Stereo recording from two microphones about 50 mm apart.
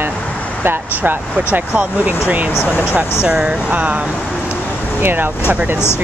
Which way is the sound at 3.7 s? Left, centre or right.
Right.